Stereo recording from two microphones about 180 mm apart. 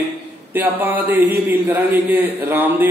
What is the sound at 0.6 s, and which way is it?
A man's voice, 10° right (ahead or behind).